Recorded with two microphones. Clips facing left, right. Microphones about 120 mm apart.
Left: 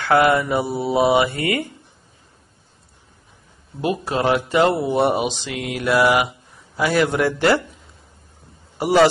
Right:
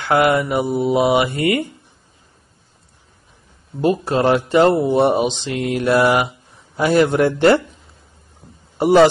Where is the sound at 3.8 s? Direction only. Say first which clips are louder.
Right 4 dB; 30° right (ahead or behind).